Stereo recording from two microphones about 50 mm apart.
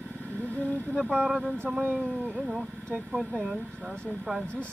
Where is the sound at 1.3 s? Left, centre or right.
Centre.